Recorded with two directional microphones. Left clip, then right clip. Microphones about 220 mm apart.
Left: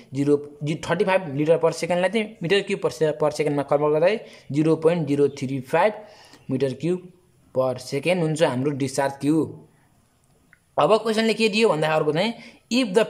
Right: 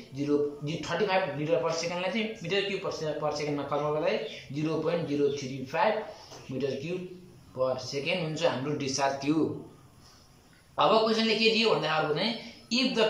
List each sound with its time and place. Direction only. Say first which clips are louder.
0.1 s a man's voice: left 6 dB; 40° left (ahead or behind)
10.7 s a man's voice: left 5 dB; 40° left (ahead or behind)